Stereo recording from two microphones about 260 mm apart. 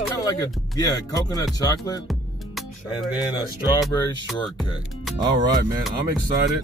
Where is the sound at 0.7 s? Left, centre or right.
Centre.